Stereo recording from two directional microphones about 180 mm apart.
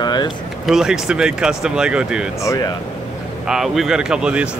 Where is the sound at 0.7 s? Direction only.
5° right (ahead or behind).